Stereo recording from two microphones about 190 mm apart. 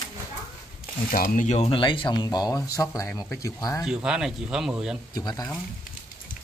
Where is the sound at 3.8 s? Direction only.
5° right (ahead or behind).